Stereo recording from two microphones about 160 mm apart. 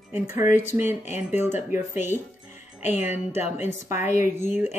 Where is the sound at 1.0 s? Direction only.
45° left (ahead or behind).